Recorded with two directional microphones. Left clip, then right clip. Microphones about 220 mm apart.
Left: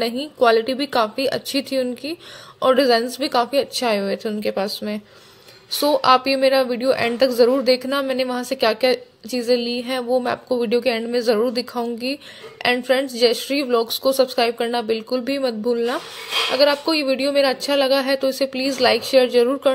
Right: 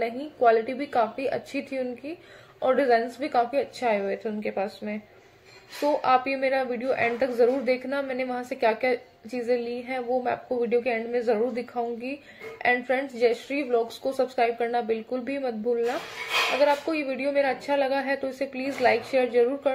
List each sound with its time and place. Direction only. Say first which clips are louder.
0.0 s a woman's voice: left 5 dB; 45° left (ahead or behind)